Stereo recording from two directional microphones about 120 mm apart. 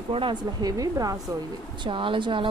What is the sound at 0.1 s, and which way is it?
Speech, 45° right (ahead or behind).